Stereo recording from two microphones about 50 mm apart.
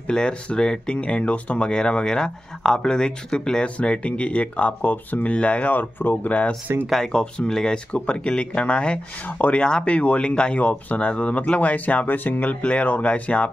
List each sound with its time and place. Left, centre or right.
0.0 s speech: centre; by 6.3 s left
7.0 s speech: centre
10.6 s speech: left
12.4 s speech: left